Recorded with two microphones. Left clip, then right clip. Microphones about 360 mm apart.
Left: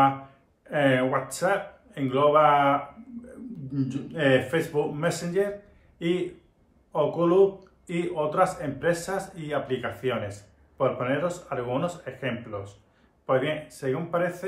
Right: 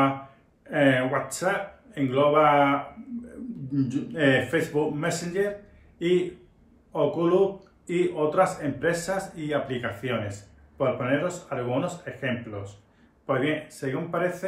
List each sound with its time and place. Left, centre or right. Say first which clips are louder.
0.7 s speech: right 1 dB; centre
6.9 s speech: even; centre